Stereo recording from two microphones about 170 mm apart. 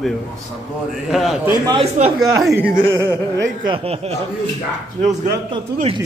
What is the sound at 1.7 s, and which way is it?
Speech, 35° right (ahead or behind).